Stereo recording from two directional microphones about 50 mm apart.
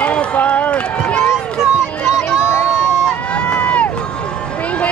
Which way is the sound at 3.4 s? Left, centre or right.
Left.